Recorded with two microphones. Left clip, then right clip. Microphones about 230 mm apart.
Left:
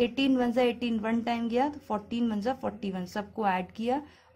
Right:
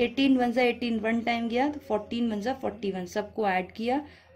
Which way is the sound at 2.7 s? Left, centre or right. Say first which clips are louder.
Right 5 dB; left.